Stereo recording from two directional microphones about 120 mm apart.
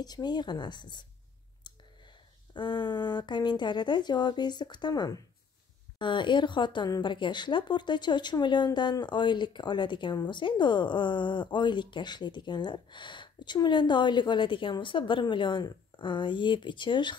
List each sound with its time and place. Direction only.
0.0 s speech: 35° left (ahead or behind)
1.6 s clicking: 40° left (ahead or behind)
2.5 s speech: 40° left (ahead or behind)